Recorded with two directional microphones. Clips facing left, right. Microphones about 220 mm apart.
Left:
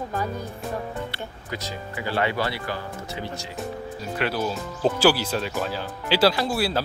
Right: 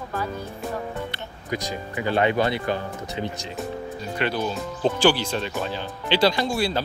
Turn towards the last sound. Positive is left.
turn(degrees=5)  # may be behind; listen again after turning